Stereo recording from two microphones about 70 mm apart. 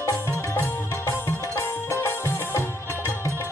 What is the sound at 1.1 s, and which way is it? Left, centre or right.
Music, left.